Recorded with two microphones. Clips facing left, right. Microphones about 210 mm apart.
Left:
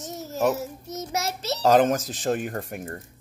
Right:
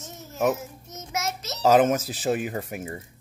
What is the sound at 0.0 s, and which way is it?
Child singing, 40° left (ahead or behind).